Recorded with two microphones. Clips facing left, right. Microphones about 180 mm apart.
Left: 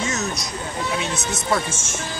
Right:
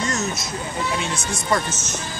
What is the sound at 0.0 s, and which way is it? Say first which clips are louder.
Vehicle: right 1 dB; centre (ahead or behind).